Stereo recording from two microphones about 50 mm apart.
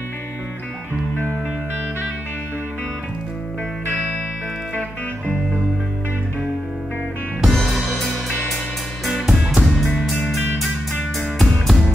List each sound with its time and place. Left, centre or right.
4.7 s music: left
7.4 s music: centre